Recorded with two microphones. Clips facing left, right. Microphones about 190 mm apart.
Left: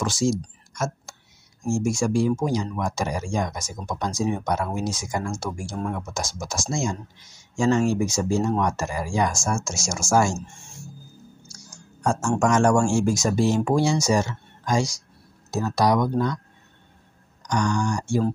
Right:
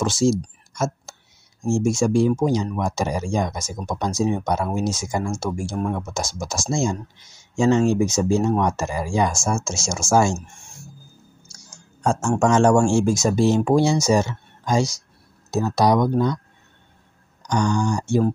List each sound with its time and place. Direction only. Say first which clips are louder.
0.0 s speech: right 4 dB; 25° right (ahead or behind)
1.7 s speech: right 4 dB; 25° right (ahead or behind)
12.0 s speech: right 2 dB; 20° right (ahead or behind)
17.4 s speech: right 3 dB; 25° right (ahead or behind)